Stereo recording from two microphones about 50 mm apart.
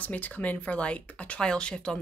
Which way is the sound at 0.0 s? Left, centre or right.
Left.